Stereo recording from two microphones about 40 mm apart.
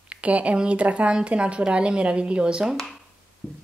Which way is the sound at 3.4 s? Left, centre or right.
Left.